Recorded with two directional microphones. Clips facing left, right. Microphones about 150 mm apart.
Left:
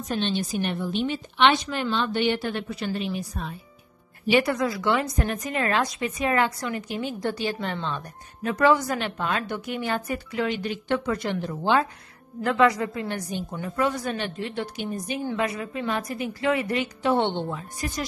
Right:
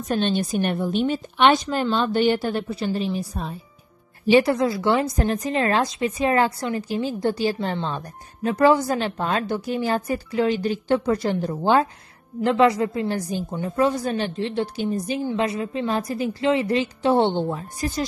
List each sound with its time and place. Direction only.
0.1 s a woman's voice: 50° right (ahead or behind)
12.4 s a woman's voice: 25° right (ahead or behind)